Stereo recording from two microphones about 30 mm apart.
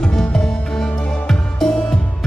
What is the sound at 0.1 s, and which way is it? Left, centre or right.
Music, centre.